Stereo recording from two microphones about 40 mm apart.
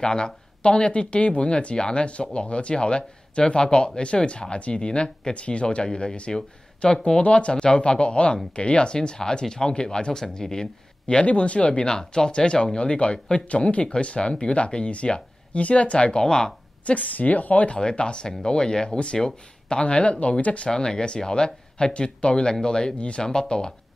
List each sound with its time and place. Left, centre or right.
0.0 s speech: left
5.9 s speech: centre
11.2 s a woman's voice: left
11.8 s speech: centre
16.8 s a woman's voice: left
17.7 s a woman's voice: left
20.7 s speech: centre
23.2 s speech: centre